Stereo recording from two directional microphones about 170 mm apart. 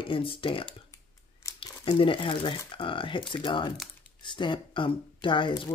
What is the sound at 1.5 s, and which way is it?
Crumpling, 20° left (ahead or behind).